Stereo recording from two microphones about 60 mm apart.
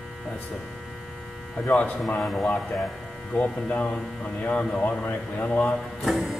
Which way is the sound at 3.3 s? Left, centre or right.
Left.